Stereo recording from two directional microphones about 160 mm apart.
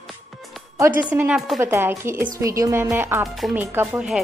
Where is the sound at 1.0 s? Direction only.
5° right (ahead or behind).